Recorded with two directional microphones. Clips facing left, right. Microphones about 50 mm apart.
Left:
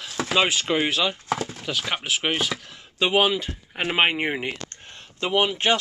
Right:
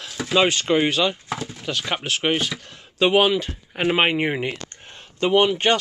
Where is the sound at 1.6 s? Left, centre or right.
Centre.